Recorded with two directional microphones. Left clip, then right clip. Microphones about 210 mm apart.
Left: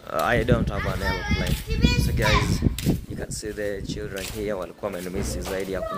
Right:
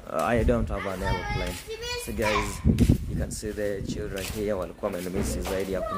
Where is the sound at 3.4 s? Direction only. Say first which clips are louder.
Left 1 dB; 5° right (ahead or behind).